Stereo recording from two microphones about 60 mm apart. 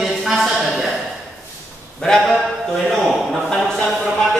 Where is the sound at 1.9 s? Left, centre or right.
Centre.